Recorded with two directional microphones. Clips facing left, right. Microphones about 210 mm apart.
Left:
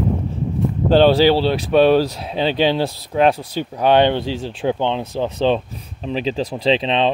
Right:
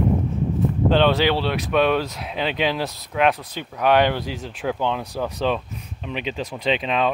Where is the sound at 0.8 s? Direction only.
35° left (ahead or behind).